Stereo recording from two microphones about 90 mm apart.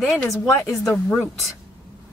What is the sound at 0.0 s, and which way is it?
Speech, centre (ahead or behind).